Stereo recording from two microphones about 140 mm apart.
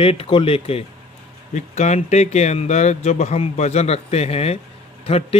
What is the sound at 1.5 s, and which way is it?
A man's voice, 55° left (ahead or behind).